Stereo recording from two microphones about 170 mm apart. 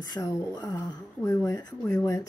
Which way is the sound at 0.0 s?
20° left (ahead or behind).